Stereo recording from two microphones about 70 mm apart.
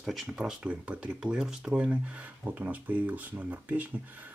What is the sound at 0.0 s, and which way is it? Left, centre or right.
Speech, centre.